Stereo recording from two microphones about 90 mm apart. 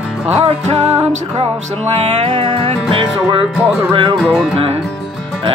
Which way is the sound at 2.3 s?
90° right.